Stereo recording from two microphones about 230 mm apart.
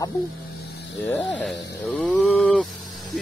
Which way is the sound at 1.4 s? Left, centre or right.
Centre.